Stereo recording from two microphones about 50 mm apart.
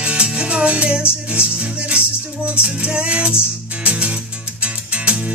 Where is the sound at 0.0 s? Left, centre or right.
Right.